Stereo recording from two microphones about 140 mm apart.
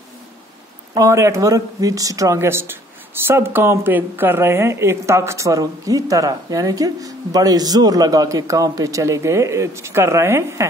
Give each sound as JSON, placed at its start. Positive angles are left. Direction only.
{"t": 0.9, "sound": "a woman's voice", "side_deg": -20}